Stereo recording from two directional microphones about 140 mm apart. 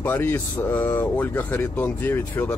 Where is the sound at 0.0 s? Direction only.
15° left (ahead or behind).